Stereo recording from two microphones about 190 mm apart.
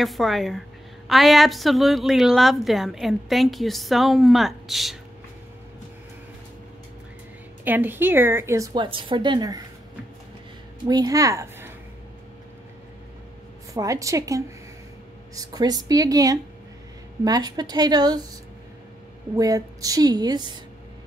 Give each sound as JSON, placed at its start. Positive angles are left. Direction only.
{"t": 0.0, "sound": "a woman's voice", "side_deg": 0}
{"t": 7.6, "sound": "a woman's voice", "side_deg": -10}
{"t": 10.9, "sound": "speech", "side_deg": -20}
{"t": 13.7, "sound": "a woman's voice", "side_deg": -15}
{"t": 19.3, "sound": "a woman's voice", "side_deg": -20}